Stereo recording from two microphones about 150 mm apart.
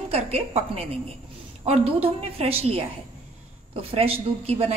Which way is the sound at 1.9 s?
40° right (ahead or behind).